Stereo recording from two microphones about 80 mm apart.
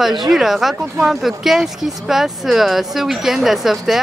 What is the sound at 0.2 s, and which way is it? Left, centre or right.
Speech, centre.